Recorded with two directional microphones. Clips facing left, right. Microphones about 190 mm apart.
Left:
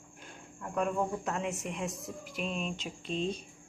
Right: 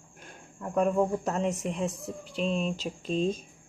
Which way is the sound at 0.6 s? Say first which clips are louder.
Right 6 dB; 40° right (ahead or behind).